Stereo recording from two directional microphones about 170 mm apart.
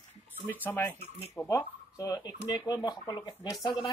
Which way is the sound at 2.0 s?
20° left (ahead or behind).